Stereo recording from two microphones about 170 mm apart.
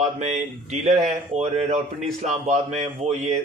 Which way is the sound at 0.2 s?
45° right (ahead or behind).